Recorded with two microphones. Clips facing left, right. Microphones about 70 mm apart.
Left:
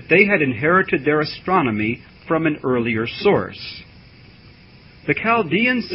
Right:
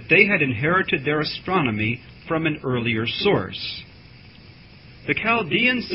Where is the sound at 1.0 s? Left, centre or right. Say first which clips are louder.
Left 5 dB; left.